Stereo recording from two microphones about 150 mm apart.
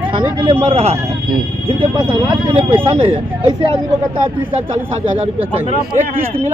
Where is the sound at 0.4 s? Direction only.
40° right (ahead or behind).